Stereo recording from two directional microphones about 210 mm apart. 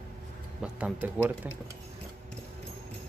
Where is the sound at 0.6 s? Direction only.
5° right (ahead or behind).